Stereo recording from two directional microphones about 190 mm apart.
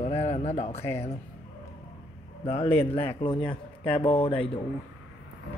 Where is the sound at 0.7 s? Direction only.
15° left (ahead or behind).